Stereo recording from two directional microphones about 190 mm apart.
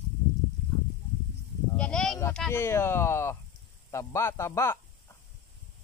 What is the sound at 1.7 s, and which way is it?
Sheep, 5° left (ahead or behind).